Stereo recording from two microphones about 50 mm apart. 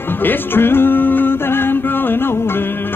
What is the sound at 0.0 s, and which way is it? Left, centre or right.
Music, left.